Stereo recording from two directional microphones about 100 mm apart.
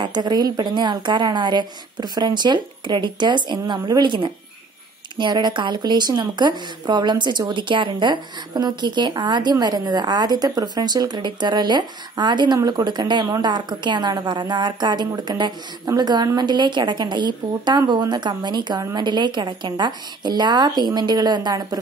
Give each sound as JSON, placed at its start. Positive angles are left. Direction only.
{"t": 0.0, "sound": "speech", "side_deg": -45}